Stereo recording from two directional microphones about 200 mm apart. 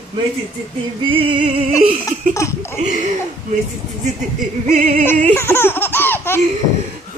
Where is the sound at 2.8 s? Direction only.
35° right (ahead or behind).